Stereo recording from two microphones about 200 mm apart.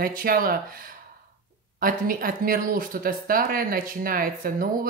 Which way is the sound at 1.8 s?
45° right (ahead or behind).